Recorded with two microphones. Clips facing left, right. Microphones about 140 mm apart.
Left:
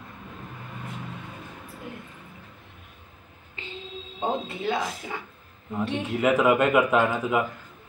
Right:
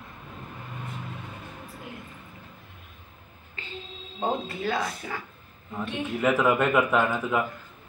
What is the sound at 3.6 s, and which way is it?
Music, 20° left (ahead or behind).